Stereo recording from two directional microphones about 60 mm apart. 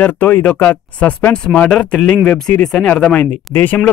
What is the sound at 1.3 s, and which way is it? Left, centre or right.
Speech, centre.